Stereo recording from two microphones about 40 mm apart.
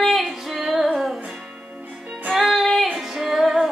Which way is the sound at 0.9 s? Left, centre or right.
Centre.